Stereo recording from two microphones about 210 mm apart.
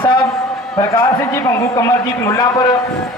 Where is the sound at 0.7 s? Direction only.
10° left (ahead or behind).